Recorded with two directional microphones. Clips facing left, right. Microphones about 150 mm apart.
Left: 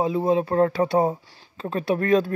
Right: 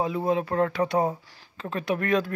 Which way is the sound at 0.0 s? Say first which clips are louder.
Left 4 dB; 25° left (ahead or behind).